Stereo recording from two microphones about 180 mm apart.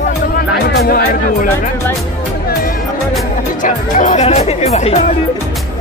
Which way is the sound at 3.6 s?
45° left (ahead or behind).